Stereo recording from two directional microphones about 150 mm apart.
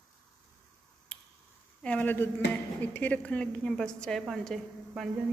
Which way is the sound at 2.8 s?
10° left (ahead or behind).